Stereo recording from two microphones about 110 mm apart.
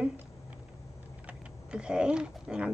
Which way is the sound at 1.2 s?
10° right (ahead or behind).